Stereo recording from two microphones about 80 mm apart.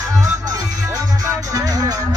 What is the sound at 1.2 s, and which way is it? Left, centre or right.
Music, right.